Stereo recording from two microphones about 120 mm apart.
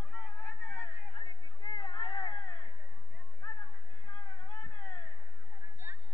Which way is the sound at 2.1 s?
35° left (ahead or behind).